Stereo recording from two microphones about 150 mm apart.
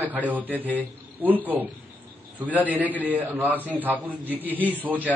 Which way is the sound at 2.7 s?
10° right (ahead or behind).